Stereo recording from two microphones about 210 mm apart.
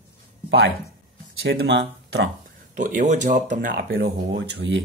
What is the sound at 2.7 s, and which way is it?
Speech, 40° right (ahead or behind).